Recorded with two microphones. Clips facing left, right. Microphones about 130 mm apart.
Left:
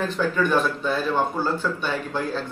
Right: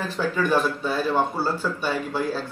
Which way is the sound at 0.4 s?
10° right (ahead or behind).